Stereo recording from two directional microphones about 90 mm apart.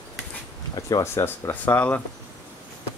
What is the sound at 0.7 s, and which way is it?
Speech, 45° left (ahead or behind).